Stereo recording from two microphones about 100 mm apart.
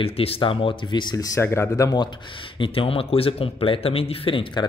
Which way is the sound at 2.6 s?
65° left (ahead or behind).